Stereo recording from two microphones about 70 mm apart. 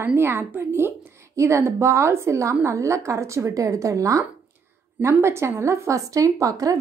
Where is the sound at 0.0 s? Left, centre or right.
Right.